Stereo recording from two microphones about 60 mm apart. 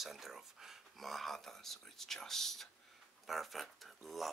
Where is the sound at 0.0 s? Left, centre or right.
Centre.